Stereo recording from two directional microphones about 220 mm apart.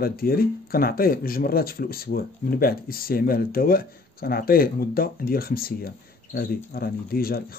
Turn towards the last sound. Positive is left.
turn(degrees=45)  # may be behind; listen again after turning